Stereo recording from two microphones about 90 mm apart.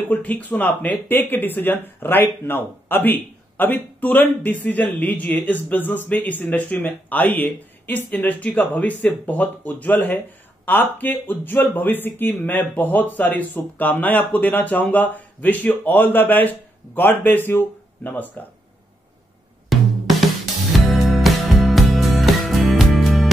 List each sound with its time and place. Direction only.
0.1 s speech: 20° left (ahead or behind)
20.7 s music: centre (ahead or behind)